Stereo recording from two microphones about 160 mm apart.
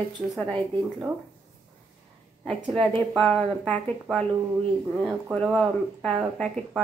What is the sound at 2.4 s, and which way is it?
A woman's voice, centre (ahead or behind).